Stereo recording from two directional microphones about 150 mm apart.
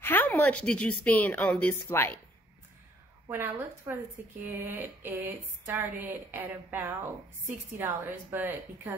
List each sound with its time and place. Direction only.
0.0 s a sound: 10° left (ahead or behind)
0.3 s speech: 10° left (ahead or behind)
3.3 s a woman's voice: 15° right (ahead or behind)